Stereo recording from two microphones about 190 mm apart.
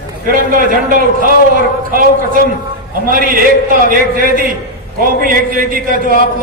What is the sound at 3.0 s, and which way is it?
A man's voice, 45° right (ahead or behind).